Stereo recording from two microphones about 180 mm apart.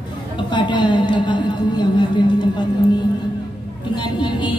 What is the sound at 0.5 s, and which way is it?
Speech, 25° left (ahead or behind).